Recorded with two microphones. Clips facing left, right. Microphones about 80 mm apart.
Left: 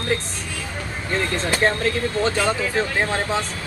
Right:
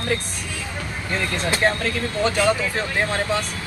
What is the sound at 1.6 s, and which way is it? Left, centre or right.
A man's voice, left.